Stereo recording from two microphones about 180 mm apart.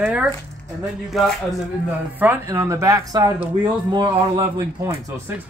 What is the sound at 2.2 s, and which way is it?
Speech, 10° right (ahead or behind).